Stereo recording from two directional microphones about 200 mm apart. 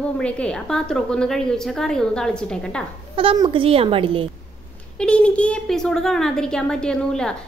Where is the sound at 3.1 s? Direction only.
25° right (ahead or behind).